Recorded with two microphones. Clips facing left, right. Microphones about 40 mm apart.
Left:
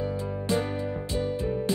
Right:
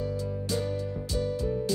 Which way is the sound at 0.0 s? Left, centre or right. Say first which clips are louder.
Left 2 dB; left.